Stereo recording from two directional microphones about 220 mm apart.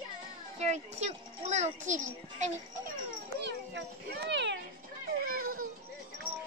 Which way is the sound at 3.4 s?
50° right (ahead or behind).